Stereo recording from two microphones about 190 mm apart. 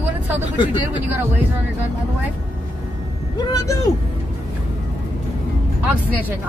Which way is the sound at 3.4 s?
15° left (ahead or behind).